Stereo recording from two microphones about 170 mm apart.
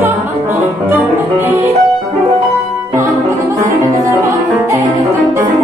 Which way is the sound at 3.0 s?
50° right (ahead or behind).